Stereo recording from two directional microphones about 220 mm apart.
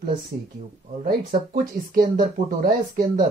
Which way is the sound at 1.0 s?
40° right (ahead or behind).